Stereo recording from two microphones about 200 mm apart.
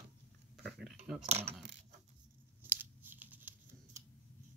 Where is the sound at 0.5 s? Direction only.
Centre (ahead or behind).